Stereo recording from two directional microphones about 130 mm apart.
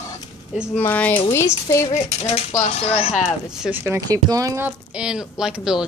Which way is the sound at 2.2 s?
60° left (ahead or behind).